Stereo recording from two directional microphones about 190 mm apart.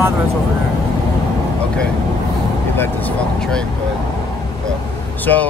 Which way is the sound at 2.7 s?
10° left (ahead or behind).